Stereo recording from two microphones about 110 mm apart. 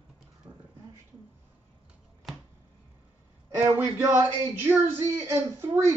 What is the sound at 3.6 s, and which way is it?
Speech, 25° right (ahead or behind).